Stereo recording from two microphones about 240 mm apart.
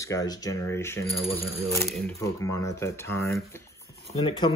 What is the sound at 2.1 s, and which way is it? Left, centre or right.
Speech, centre.